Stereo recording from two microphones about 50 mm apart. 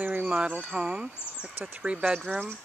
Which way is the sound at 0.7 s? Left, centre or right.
Centre.